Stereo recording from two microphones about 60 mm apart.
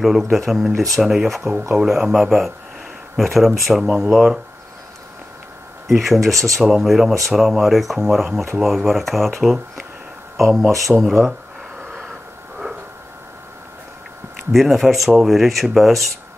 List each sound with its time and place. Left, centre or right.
0.0 s speech: centre
5.9 s speech: centre
6.3 s speech: right
6.6 s speech: centre
11.9 s a sound: centre
14.5 s speech: centre